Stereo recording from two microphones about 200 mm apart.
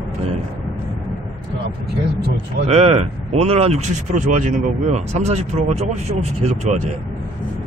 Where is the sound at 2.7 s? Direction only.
30° right (ahead or behind).